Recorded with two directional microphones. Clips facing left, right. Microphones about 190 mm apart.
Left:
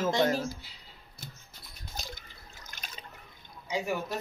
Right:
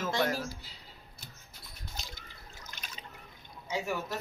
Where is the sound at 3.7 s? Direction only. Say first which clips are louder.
Left 2 dB; 15° left (ahead or behind).